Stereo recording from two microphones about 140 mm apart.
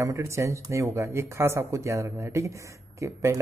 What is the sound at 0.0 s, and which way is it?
Speech, 20° right (ahead or behind).